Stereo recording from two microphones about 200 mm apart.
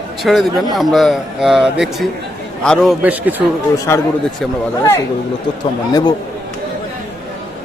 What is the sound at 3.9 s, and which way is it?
Speech, 15° left (ahead or behind).